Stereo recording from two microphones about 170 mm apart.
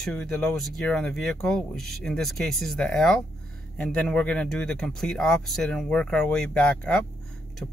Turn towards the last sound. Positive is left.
turn(degrees=5)  # may be behind; listen again after turning